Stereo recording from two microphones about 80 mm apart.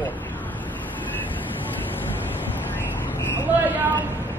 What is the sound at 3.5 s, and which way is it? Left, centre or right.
Speech, right.